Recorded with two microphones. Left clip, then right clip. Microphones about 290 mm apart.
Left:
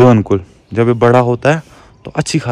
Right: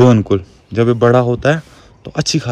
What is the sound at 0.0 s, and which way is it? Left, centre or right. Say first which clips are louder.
Speech: left 2 dB; centre.